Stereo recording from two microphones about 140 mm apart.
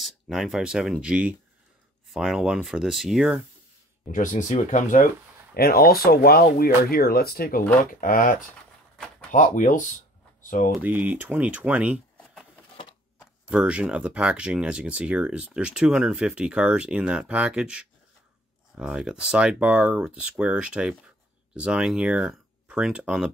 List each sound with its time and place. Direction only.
0.0 s speech: centre (ahead or behind)
4.0 s speech: 65° left (ahead or behind)
5.5 s speech: 90° left
9.3 s speech: 65° left (ahead or behind)
10.8 s speech: 10° right (ahead or behind)
13.2 s speech: 5° right (ahead or behind)